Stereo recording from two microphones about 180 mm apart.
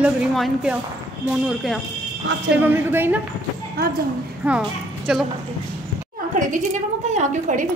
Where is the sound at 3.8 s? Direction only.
60° right (ahead or behind).